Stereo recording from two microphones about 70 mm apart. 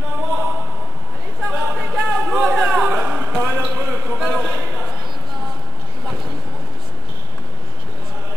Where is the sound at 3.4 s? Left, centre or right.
Right.